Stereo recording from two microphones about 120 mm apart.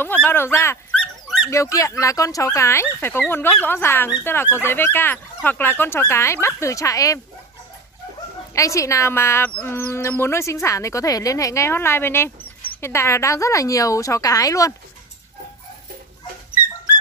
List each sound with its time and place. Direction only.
0.0 s speech: 15° left (ahead or behind)
0.9 s dog: 5° left (ahead or behind)
1.5 s speech: 25° left (ahead or behind)
8.5 s speech: 25° left (ahead or behind)